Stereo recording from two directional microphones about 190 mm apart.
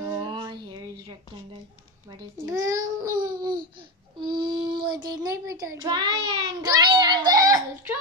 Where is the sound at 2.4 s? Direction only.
15° right (ahead or behind).